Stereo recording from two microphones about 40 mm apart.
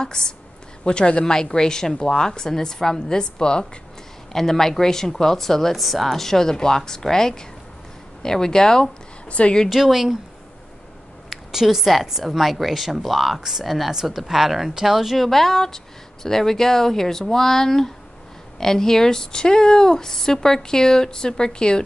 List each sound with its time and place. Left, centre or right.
0.0 s a woman's voice: centre
4.3 s speech: centre
9.3 s a woman's voice: left
9.7 s speech: centre
11.2 s speech: centre
15.1 s speech: centre